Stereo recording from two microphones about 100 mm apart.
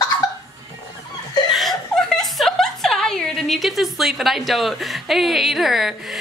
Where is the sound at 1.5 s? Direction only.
Centre (ahead or behind).